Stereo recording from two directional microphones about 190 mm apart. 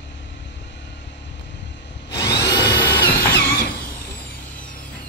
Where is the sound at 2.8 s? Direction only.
55° left (ahead or behind).